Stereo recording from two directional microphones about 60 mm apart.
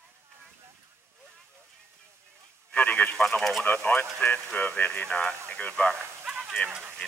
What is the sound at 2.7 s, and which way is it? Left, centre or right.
Radio, left.